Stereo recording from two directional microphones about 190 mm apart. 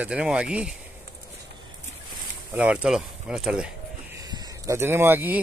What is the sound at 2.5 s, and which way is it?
Speech, 5° right (ahead or behind).